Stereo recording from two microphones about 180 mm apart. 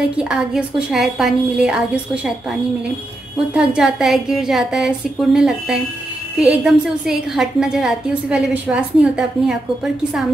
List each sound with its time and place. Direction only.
0.2 s a woman's voice: 5° right (ahead or behind)
3.5 s a woman's voice: 5° right (ahead or behind)